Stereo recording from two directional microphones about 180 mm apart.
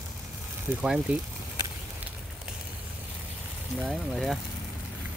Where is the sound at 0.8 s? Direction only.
5° right (ahead or behind).